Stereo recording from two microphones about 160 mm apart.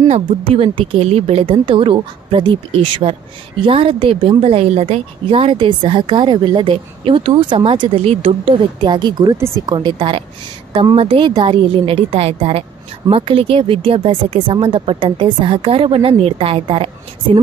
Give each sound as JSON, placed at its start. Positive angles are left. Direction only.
{"t": 0.1, "sound": "a woman's voice", "side_deg": -35}